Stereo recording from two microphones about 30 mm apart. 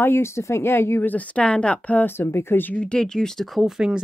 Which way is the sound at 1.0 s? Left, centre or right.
Left.